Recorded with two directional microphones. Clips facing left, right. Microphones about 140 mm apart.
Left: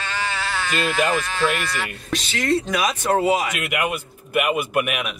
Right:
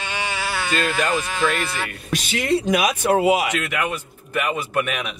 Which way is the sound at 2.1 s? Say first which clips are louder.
Right 1 dB; 15° right (ahead or behind).